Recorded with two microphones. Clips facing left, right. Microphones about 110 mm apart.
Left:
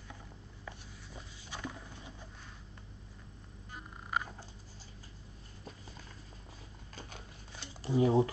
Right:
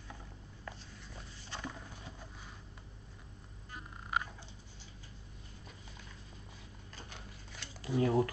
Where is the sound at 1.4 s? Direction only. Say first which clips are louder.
Left 1 dB; 10° left (ahead or behind).